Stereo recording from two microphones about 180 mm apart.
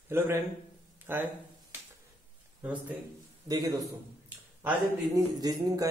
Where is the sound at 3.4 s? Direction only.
20° right (ahead or behind).